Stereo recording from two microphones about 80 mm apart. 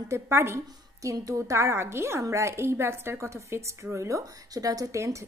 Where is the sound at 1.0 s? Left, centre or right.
Right.